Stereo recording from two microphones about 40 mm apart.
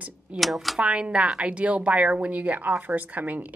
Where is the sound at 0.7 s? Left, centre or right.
Right.